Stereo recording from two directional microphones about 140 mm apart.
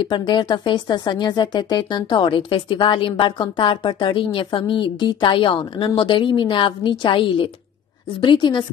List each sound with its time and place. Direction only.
0.0 s speech: 35° left (ahead or behind)